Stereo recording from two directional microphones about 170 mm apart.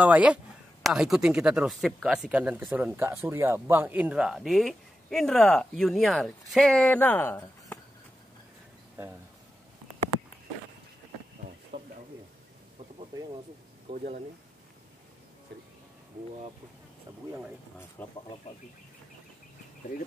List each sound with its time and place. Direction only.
0.0 s speech: 10° right (ahead or behind); by 7.8 s 10° left (ahead or behind)
11.7 s a sound: 35° right (ahead or behind)
13.9 s speech: 45° right (ahead or behind)
18.0 s speech: 10° left (ahead or behind)